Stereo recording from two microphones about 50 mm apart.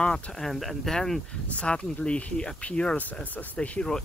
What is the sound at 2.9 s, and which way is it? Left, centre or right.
Speech, left.